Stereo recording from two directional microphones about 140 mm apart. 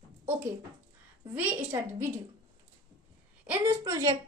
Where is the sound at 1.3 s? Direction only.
15° right (ahead or behind).